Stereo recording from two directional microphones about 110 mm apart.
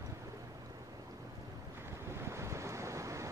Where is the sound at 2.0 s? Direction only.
25° right (ahead or behind).